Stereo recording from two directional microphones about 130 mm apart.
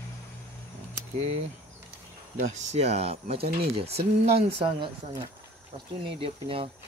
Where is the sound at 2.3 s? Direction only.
65° right (ahead or behind); by 4.9 s 40° right (ahead or behind).